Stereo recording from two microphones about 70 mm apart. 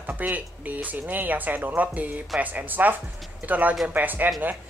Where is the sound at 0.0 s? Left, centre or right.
Right.